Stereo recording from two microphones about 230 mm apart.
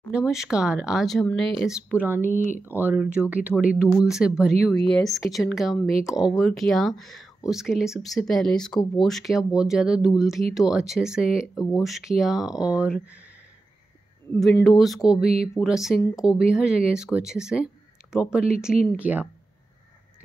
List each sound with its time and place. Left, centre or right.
0.1 s speech: centre
2.3 s speech: left
2.6 s speech: centre
14.3 s speech: centre